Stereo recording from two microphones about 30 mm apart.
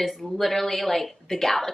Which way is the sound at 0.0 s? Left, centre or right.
Centre.